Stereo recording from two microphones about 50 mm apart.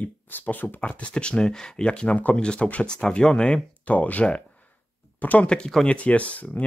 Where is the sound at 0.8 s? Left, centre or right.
Left.